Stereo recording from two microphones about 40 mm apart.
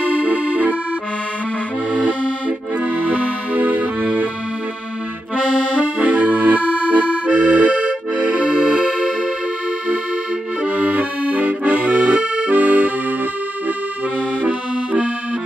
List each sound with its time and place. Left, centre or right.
0.1 s accordion: right
3.5 s music: right
5.9 s accordion: right
10.6 s accordion: right
12.4 s accordion: right
14.4 s accordion: right